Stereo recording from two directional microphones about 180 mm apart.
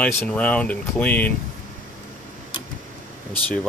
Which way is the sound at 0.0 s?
5° left (ahead or behind).